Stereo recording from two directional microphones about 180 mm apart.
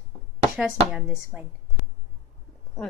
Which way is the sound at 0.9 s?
5° right (ahead or behind).